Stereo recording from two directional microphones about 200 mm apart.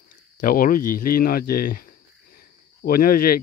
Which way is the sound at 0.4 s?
45° left (ahead or behind).